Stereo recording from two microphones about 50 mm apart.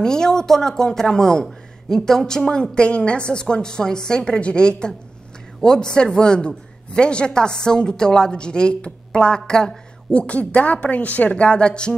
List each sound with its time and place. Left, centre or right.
0.0 s a man's voice: centre